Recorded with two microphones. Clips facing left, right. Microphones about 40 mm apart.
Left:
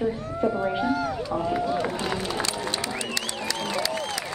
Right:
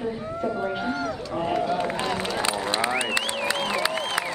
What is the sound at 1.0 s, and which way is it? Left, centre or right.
Run, centre.